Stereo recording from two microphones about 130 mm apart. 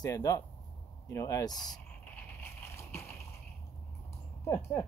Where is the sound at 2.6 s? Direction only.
20° left (ahead or behind).